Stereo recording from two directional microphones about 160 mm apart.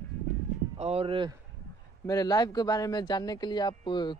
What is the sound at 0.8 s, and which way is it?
Speech, 40° right (ahead or behind).